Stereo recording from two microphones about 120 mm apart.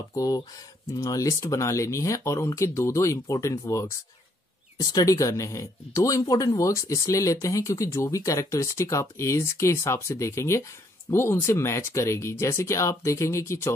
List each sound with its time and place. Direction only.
0.1 s speech: 30° left (ahead or behind)